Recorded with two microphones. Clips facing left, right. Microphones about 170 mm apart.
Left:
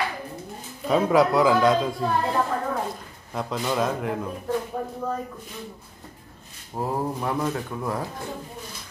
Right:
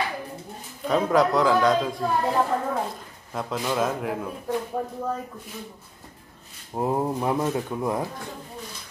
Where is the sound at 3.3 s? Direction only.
Centre (ahead or behind).